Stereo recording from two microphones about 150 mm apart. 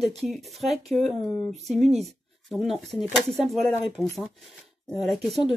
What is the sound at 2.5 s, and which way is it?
Speech, centre (ahead or behind).